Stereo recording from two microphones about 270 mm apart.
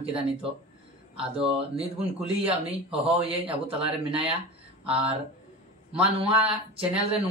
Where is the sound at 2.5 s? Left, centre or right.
Right.